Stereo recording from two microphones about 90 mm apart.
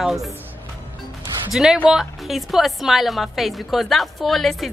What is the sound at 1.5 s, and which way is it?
Speech, 5° right (ahead or behind).